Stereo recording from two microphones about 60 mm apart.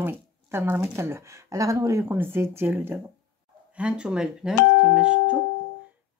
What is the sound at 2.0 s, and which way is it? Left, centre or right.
Speech, right.